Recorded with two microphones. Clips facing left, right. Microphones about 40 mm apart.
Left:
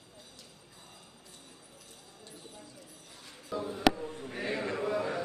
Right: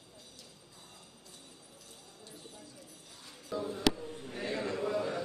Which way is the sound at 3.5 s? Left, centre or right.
Centre.